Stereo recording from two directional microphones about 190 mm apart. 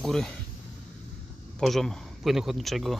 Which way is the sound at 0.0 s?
Centre (ahead or behind).